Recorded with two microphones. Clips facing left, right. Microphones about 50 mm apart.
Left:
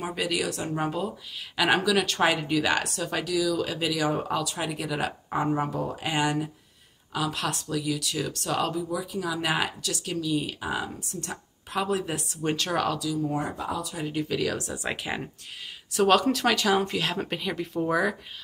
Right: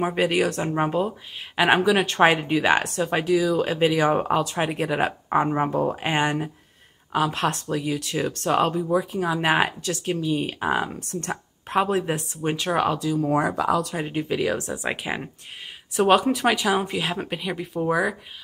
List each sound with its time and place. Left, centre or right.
0.0 s speech: right
12.4 s speech: centre
13.0 s speech: right
13.3 s speech: right
13.9 s speech: right; by 18.1 s centre